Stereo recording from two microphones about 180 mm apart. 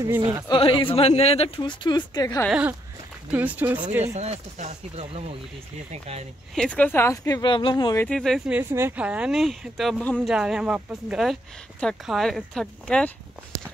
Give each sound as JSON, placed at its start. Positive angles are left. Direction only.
{"t": 0.5, "sound": "speech", "side_deg": 30}
{"t": 2.4, "sound": "speech", "side_deg": -5}
{"t": 4.0, "sound": "speech", "side_deg": -35}
{"t": 6.5, "sound": "speech", "side_deg": 5}
{"t": 8.0, "sound": "speech", "side_deg": 5}
{"t": 8.5, "sound": "speech", "side_deg": -10}